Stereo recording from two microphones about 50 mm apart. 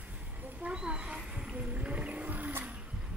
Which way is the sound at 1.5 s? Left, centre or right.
Right.